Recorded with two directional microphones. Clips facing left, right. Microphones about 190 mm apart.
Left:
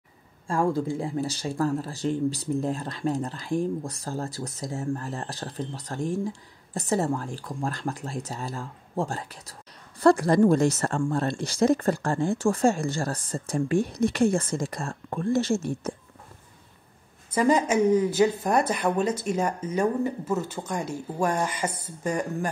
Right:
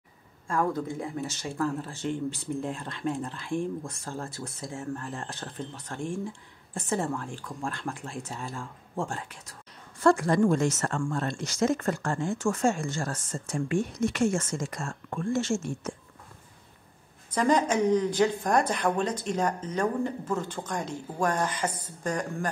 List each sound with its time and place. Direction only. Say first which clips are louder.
0.5 s speech: left 3 dB; 30° left (ahead or behind)
17.3 s a woman's voice: left 2 dB; 10° left (ahead or behind)